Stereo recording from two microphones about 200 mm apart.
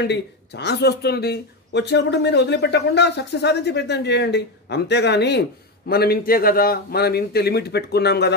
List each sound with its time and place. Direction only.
0.0 s speech: 60° left (ahead or behind)